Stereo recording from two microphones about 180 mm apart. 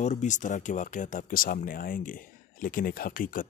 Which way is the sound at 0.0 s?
40° left (ahead or behind).